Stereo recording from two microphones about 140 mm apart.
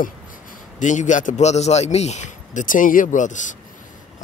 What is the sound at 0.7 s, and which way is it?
A man's voice, 65° left (ahead or behind).